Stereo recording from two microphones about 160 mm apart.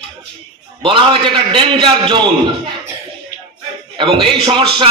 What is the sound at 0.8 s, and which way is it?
A man's voice, 30° right (ahead or behind).